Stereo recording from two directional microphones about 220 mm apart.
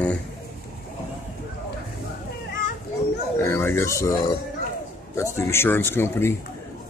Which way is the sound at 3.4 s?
10° left (ahead or behind).